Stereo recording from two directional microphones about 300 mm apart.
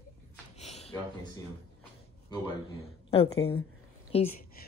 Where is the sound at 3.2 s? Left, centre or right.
Left.